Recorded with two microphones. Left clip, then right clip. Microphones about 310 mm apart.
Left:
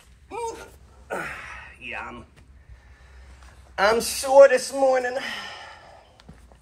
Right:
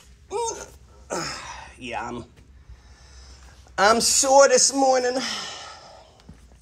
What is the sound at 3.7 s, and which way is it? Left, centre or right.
A man's voice, right.